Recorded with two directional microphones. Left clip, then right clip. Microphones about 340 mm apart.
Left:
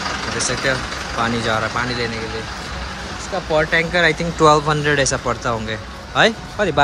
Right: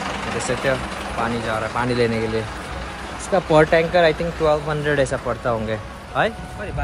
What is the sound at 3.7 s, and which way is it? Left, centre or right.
Speech, centre.